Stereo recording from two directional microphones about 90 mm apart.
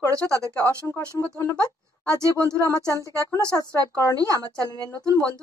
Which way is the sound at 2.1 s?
35° right (ahead or behind).